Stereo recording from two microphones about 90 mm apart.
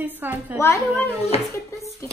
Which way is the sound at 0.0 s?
20° right (ahead or behind).